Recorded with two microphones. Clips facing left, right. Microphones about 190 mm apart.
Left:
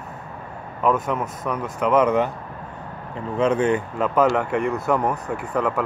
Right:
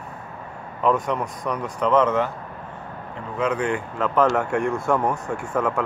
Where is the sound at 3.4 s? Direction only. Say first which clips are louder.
Left 4 dB; 25° left (ahead or behind).